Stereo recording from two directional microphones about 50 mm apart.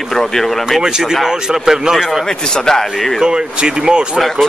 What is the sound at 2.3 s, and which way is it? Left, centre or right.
Speech, centre.